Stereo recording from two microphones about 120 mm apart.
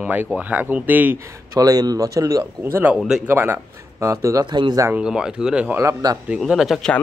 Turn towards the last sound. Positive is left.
turn(degrees=0)  # may be behind; listen again after turning